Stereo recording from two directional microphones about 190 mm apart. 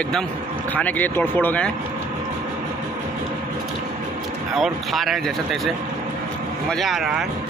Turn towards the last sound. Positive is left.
turn(degrees=0)  # may be behind; listen again after turning